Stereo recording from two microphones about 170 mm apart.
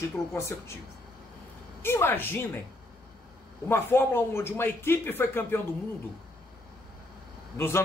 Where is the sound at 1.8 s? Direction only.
15° left (ahead or behind).